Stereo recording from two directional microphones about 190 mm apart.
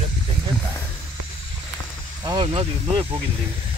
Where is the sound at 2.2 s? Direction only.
25° right (ahead or behind).